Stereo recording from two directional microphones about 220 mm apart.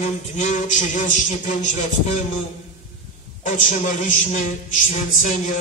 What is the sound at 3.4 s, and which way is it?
A man's voice, 35° left (ahead or behind).